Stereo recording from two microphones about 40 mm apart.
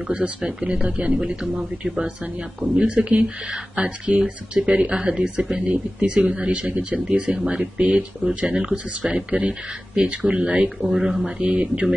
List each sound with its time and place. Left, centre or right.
0.1 s speech: right
2.7 s speech: right
10.4 s speech: centre
11.2 s speech: right